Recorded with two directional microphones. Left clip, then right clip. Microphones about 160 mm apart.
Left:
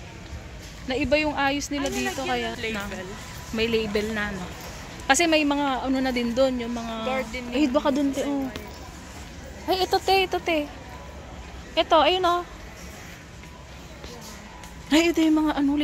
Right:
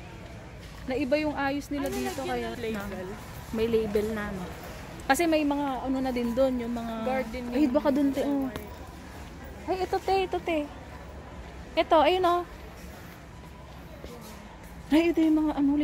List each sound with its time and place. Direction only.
0.8 s speech: 10° left (ahead or behind)
3.5 s a woman's voice: 5° right (ahead or behind)
5.3 s speech: 15° left (ahead or behind)
6.3 s a woman's voice: 5° right (ahead or behind)
7.1 s speech: 35° right (ahead or behind)
7.5 s speech: 10° right (ahead or behind)
9.7 s speech: 15° left (ahead or behind)
10.1 s a woman's voice: 5° left (ahead or behind)
11.7 s a woman's voice: 20° right (ahead or behind)
14.9 s a woman's voice: centre (ahead or behind)